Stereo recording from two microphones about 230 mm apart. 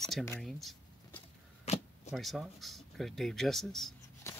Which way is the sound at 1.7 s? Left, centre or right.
Left.